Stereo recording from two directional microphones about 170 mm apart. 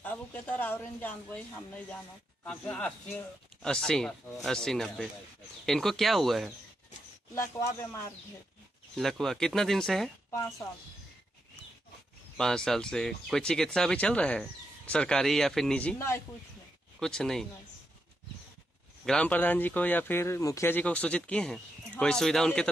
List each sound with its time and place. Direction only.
0.0 s speech: 10° left (ahead or behind)
2.4 s speech: 5° left (ahead or behind)
7.3 s speech: 15° left (ahead or behind)
8.9 s speech: centre (ahead or behind)
12.4 s speech: 5° left (ahead or behind)
19.0 s speech: 5° left (ahead or behind)